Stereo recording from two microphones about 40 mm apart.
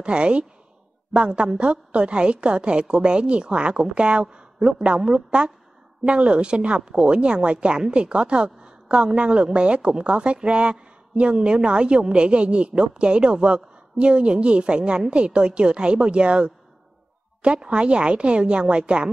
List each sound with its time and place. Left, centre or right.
0.0 s speech: right